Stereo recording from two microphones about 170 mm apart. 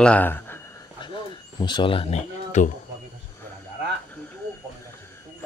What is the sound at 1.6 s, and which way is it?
Speech, 30° left (ahead or behind).